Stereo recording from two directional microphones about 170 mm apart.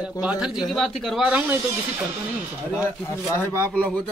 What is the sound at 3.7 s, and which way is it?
Speech, 5° left (ahead or behind).